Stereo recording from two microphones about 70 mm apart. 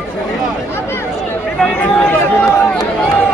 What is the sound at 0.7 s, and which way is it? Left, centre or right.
Chatter, left.